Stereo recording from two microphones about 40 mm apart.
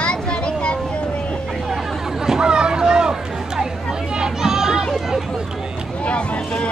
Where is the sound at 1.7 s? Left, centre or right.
Centre.